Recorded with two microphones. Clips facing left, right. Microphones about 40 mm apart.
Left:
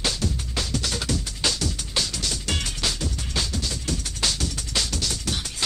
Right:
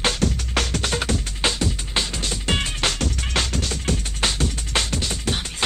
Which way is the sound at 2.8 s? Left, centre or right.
Right.